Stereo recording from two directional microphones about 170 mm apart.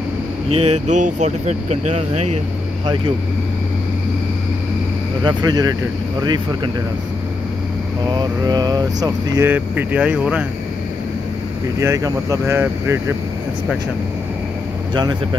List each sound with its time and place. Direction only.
0.5 s speech: 40° right (ahead or behind)
5.2 s speech: 25° right (ahead or behind)
8.1 s speech: 25° right (ahead or behind); by 10.4 s 5° right (ahead or behind)
11.8 s speech: 20° right (ahead or behind)